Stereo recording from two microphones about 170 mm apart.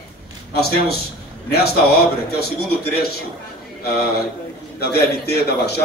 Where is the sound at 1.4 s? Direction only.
65° left (ahead or behind).